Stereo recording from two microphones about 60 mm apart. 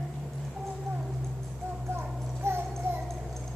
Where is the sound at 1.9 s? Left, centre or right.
Right.